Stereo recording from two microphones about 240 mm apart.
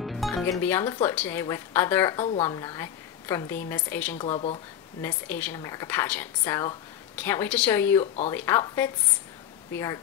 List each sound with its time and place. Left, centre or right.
0.0 s music: centre
0.5 s a woman's voice: centre
4.2 s speech: left
5.0 s a woman's voice: centre